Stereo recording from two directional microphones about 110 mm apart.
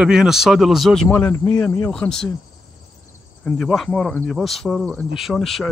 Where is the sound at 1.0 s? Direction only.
20° left (ahead or behind).